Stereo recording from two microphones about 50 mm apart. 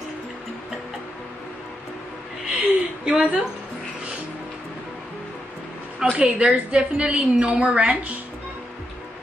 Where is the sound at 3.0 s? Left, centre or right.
Centre.